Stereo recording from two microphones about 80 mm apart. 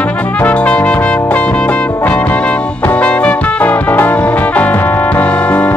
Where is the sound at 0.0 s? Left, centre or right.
Centre.